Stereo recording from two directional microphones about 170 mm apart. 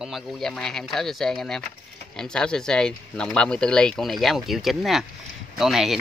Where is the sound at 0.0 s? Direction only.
Centre (ahead or behind).